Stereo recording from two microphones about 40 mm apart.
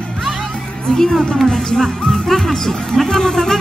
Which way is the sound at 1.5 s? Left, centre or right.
Centre.